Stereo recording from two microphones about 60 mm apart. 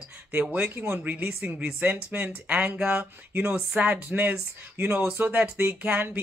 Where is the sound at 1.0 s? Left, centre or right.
Right.